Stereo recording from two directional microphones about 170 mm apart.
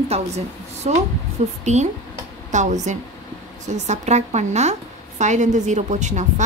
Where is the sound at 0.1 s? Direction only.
40° right (ahead or behind).